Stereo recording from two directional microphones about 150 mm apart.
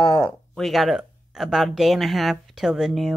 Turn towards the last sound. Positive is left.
turn(degrees=0)  # may be behind; listen again after turning